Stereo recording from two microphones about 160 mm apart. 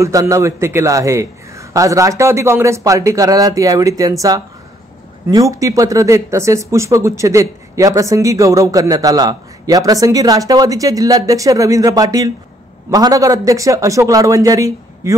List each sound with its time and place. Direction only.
0.0 s speech: 20° right (ahead or behind)
5.3 s speech: 20° right (ahead or behind)